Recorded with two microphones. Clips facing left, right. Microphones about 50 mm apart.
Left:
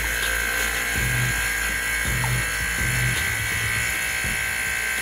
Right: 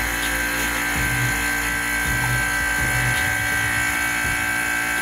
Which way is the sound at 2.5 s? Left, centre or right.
Centre.